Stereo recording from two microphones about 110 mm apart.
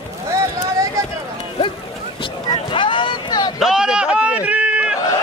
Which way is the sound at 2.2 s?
50° left (ahead or behind).